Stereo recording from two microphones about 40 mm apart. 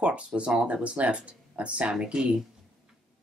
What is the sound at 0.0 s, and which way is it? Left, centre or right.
Speech, right.